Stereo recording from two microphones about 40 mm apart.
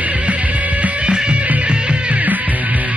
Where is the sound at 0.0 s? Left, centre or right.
Right.